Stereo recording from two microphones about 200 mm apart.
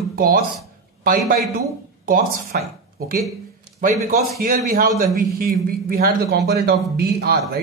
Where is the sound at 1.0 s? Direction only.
45° right (ahead or behind).